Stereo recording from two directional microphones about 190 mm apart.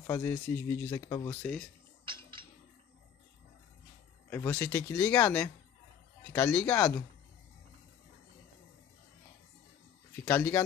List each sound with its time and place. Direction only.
0.0 s speech: 10° left (ahead or behind)
2.0 s a sound: 25° right (ahead or behind)
4.3 s speech: 10° left (ahead or behind)
10.2 s speech: 10° left (ahead or behind)